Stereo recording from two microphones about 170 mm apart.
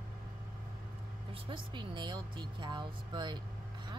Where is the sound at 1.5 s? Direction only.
30° right (ahead or behind).